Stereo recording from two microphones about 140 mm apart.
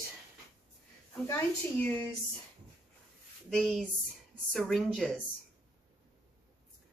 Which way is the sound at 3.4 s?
5° left (ahead or behind).